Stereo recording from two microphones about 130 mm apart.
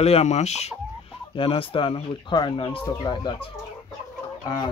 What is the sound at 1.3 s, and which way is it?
Speech, 45° left (ahead or behind).